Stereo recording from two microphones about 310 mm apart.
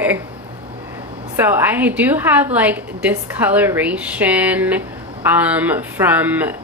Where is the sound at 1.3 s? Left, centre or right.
Centre.